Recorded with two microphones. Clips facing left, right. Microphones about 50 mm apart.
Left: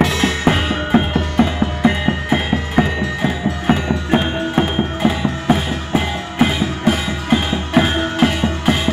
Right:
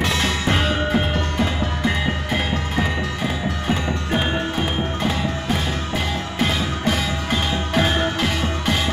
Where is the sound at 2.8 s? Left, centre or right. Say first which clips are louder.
Left 7 dB; left.